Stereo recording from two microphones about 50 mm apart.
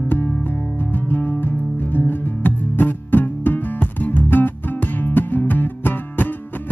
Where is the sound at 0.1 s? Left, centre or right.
Left.